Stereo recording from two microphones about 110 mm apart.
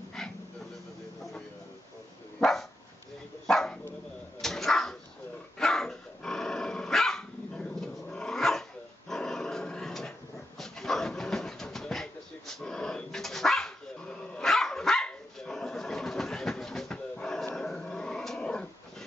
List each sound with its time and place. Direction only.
0.2 s dog: 5° left (ahead or behind)
3.4 s dog: 5° left (ahead or behind)
4.4 s cat: 5° left (ahead or behind)
5.6 s dog: 5° left (ahead or behind)
10.6 s pigeon: 5° left (ahead or behind)
17.6 s dog: 5° left (ahead or behind)